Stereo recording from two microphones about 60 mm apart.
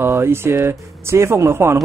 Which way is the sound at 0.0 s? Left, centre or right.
Right.